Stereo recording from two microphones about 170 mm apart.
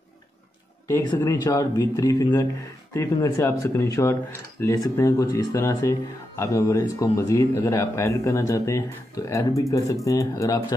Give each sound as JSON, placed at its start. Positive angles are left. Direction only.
{"t": 0.8, "sound": "speech", "side_deg": 15}